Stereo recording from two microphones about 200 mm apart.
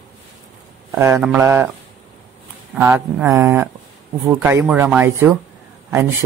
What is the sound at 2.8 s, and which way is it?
A man's voice, 10° right (ahead or behind).